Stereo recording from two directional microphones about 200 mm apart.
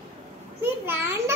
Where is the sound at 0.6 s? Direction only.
10° right (ahead or behind).